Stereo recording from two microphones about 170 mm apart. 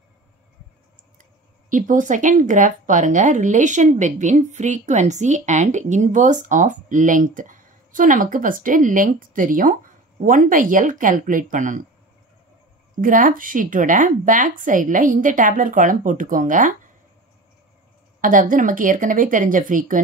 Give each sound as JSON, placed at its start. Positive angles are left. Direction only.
{"t": 1.7, "sound": "speech", "side_deg": -50}
{"t": 12.9, "sound": "speech", "side_deg": -55}
{"t": 18.2, "sound": "speech", "side_deg": -50}